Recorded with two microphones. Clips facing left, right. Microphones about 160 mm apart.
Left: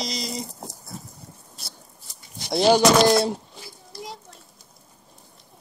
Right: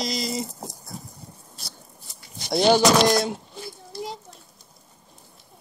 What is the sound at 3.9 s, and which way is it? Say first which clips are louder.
Children playing: right 4 dB; 25° right (ahead or behind).